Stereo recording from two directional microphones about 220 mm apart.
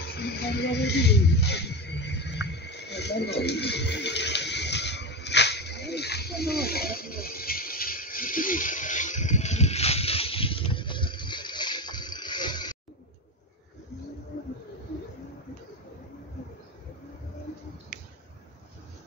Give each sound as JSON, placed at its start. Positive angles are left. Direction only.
{"t": 0.0, "sound": "music", "side_deg": 50}